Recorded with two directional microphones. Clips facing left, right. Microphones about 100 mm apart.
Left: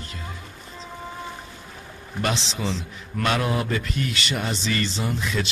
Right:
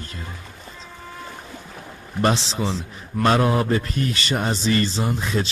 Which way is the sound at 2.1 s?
35° right (ahead or behind).